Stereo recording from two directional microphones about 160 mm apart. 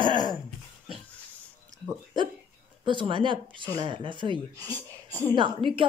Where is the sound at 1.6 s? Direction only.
25° right (ahead or behind).